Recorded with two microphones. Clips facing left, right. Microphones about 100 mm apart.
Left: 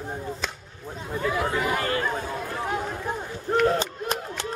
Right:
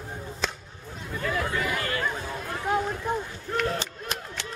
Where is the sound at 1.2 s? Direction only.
15° left (ahead or behind).